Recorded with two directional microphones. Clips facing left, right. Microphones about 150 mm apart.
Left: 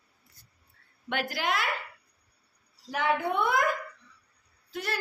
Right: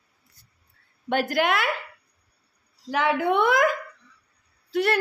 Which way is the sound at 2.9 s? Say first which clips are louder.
Right 5 dB; 90° right.